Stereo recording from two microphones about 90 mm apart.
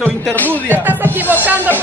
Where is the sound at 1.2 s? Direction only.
20° right (ahead or behind).